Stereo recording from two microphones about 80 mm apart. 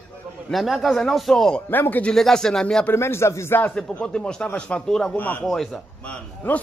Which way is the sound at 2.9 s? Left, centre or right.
Left.